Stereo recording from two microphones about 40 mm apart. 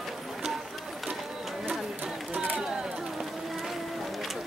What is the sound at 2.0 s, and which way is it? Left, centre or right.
Run, right.